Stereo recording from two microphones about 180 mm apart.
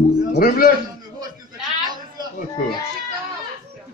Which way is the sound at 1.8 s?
25° right (ahead or behind).